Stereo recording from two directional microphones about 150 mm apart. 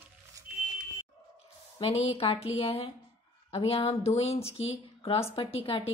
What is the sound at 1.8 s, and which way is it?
A woman's voice, 40° left (ahead or behind).